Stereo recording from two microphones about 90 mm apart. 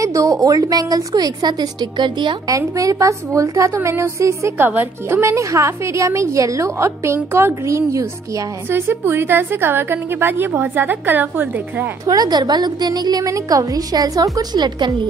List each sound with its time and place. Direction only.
0.0 s a woman's voice: 40° right (ahead or behind); by 2.3 s 60° right (ahead or behind)
2.4 s a woman's voice: 40° right (ahead or behind)
4.6 s a woman's voice: 20° right (ahead or behind)
8.7 s a woman's voice: 25° right (ahead or behind)
12.1 s a woman's voice: 50° right (ahead or behind)